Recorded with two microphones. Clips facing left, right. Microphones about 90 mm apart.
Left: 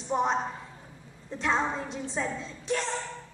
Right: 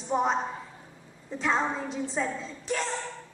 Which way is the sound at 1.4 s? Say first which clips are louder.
Right 1 dB; centre (ahead or behind).